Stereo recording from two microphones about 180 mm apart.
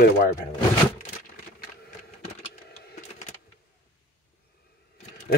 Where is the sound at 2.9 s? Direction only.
45° left (ahead or behind).